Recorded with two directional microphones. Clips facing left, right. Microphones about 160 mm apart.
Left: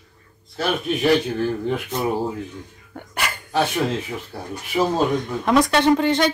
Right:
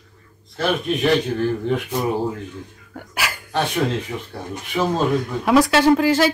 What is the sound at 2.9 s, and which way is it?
Dog, 5° right (ahead or behind).